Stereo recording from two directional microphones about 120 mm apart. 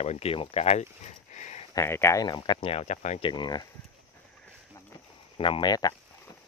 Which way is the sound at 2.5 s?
60° left (ahead or behind).